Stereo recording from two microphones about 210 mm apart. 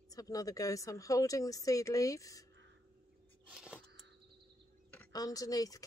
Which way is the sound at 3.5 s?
5° right (ahead or behind).